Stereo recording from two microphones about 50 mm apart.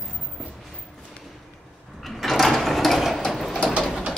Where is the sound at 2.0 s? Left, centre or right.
Centre.